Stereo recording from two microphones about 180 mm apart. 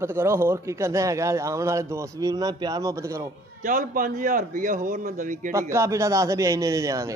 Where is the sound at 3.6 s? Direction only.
50° right (ahead or behind).